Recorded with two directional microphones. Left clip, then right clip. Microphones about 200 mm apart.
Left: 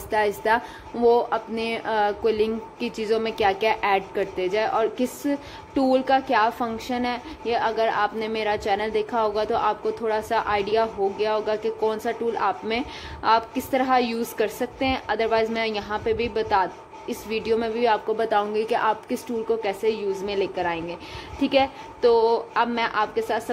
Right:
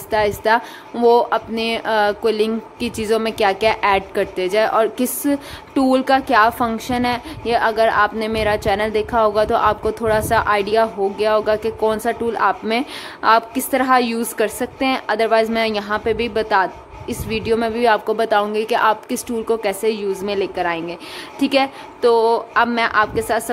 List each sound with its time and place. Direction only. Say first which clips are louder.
0.1 s a woman's voice: right 5 dB; 10° right (ahead or behind)